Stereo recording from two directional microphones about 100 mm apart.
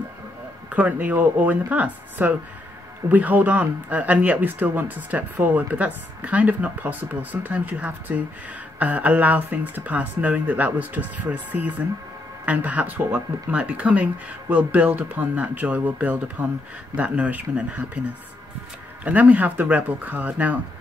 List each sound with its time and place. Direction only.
0.7 s speech: 15° right (ahead or behind)
19.0 s speech: 15° right (ahead or behind)